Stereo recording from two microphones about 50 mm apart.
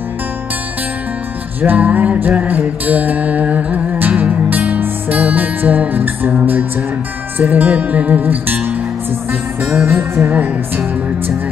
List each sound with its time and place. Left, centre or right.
1.6 s music: right
9.8 s music: right
10.2 s music: right